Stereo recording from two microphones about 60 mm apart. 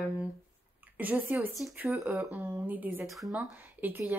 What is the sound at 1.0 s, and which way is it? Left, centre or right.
Speech, right.